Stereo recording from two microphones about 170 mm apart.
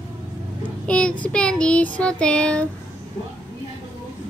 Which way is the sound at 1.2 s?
5° left (ahead or behind).